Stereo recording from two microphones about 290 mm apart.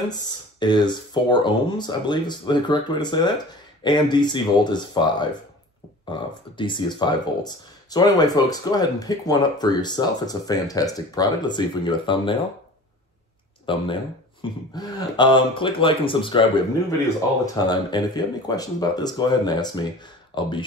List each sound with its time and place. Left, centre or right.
0.6 s speech: centre
13.7 s speech: centre
17.6 s speech: centre